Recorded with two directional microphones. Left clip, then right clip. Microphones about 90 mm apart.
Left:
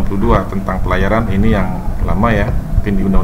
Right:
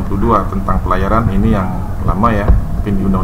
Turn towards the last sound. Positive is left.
turn(degrees=-5)  # may be behind; listen again after turning